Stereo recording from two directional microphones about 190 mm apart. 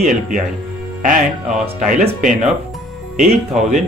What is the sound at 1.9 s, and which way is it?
Speech, 45° right (ahead or behind).